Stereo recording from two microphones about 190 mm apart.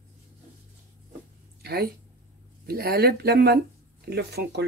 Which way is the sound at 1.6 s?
55° right (ahead or behind).